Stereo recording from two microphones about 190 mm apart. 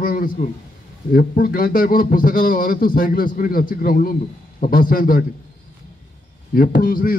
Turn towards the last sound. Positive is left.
turn(degrees=50)  # may be behind; listen again after turning